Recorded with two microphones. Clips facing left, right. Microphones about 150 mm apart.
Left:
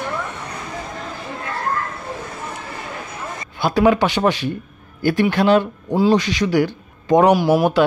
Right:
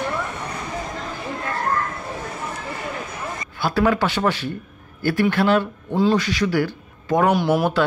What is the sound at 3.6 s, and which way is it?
Speech, 20° left (ahead or behind).